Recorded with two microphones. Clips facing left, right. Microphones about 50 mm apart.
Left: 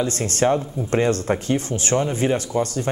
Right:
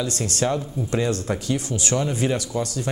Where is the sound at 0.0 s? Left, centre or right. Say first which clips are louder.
Left 4 dB; left.